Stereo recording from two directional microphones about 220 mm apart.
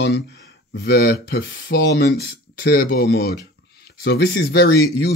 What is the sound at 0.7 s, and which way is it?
Speech, 45° left (ahead or behind).